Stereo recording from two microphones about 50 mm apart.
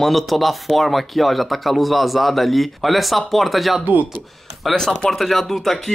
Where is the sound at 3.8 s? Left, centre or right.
Right.